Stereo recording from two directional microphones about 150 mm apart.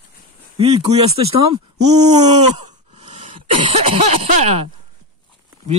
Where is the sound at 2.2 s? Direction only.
50° right (ahead or behind).